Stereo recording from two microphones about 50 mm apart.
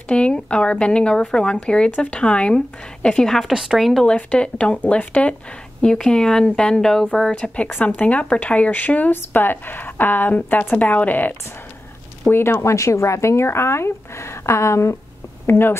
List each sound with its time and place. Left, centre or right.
0.1 s speech: left
3.5 s speech: centre
4.0 s speech: left
5.8 s speech: centre
7.7 s a woman's voice: left
9.1 s a woman's voice: left
12.3 s speech: left
12.6 s speech: left
15.4 s speech: left